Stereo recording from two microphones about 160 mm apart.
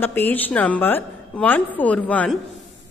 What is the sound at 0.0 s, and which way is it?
A woman's voice, 10° left (ahead or behind).